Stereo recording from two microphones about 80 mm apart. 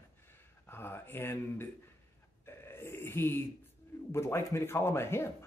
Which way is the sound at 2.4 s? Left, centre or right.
Left.